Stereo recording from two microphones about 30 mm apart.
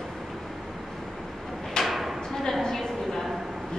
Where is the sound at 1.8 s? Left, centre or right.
Centre.